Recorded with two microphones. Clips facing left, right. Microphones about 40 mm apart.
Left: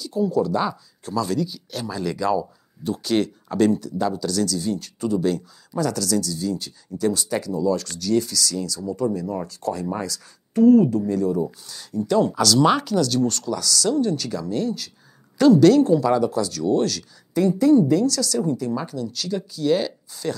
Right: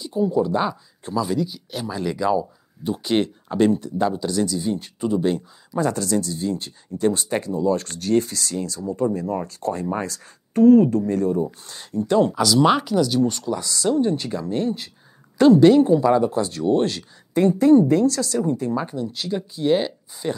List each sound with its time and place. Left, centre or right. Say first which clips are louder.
0.0 s speech: right 1 dB; right
12.3 s speech: right 1 dB; centre